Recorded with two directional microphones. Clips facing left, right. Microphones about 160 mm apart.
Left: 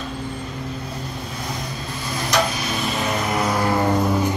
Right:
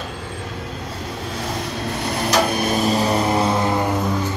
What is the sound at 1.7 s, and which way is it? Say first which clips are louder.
Vehicle: right 5 dB; 75° right (ahead or behind).